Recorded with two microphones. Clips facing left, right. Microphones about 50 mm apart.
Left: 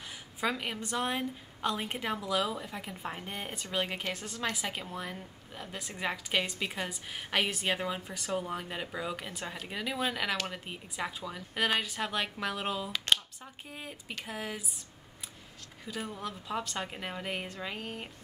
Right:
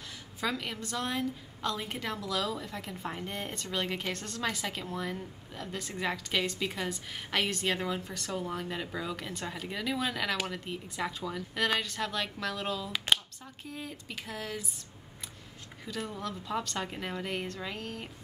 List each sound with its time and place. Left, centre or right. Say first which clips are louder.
0.4 s a woman's voice: left 1 dB; centre
12.9 s speech: right 1 dB; centre
13.7 s a woman's voice: right 2 dB; centre
15.9 s a woman's voice: right 1 dB; centre